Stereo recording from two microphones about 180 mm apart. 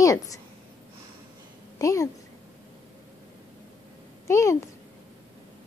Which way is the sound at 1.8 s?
15° left (ahead or behind).